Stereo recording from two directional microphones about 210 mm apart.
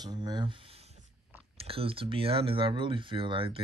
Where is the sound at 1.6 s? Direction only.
25° right (ahead or behind).